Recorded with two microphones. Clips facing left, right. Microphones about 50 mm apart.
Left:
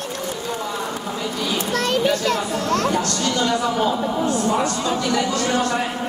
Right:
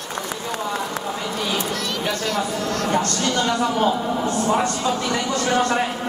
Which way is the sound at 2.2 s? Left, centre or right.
Left.